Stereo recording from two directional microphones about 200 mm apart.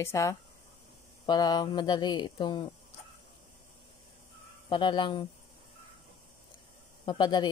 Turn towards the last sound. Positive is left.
turn(degrees=20)  # may be behind; listen again after turning